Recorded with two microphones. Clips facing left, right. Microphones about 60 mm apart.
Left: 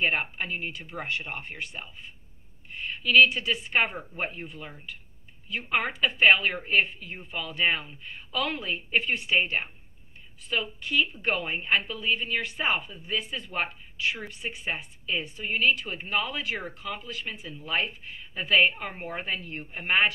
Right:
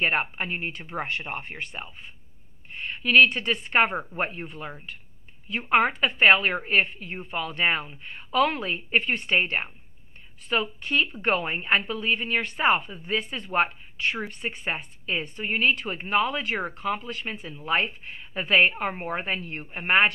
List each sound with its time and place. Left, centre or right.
0.0 s a woman's voice: right
3.9 s a woman's voice: right
4.5 s a woman's voice: right